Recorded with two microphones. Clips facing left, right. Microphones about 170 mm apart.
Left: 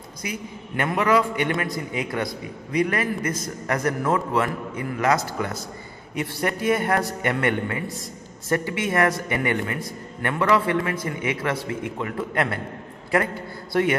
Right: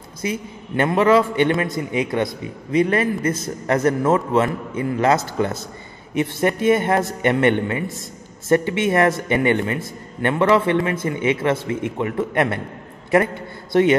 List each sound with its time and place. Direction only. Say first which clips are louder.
0.2 s a man's voice: right 6 dB; 25° right (ahead or behind)
13.7 s a man's voice: right 6 dB; 25° right (ahead or behind)